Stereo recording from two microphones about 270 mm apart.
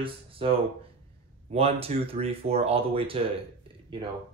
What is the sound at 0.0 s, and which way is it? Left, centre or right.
Speech, right.